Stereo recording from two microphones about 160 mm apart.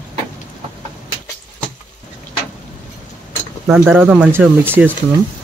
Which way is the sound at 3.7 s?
10° right (ahead or behind).